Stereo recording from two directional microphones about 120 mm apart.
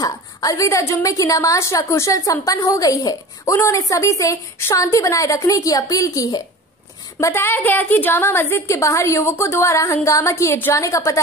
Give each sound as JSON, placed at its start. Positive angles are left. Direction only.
{"t": 0.0, "sound": "a woman's voice", "side_deg": 30}